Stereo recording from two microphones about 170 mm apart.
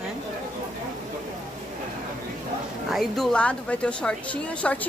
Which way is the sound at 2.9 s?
Centre (ahead or behind).